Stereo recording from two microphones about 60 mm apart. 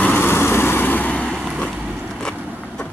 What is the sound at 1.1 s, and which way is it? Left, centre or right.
Vehicle, left.